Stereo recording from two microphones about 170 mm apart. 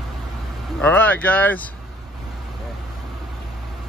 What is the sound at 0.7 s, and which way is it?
Speech, 10° left (ahead or behind).